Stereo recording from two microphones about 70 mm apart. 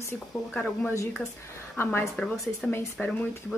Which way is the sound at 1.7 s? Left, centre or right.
Left.